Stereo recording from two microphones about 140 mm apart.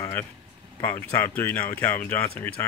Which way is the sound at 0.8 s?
15° left (ahead or behind).